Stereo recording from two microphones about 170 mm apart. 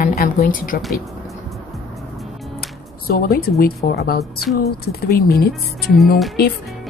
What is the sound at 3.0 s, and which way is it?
A woman's voice, 65° left (ahead or behind).